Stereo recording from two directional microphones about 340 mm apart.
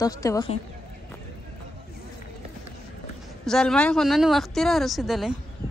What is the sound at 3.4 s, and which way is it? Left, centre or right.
Speech, centre.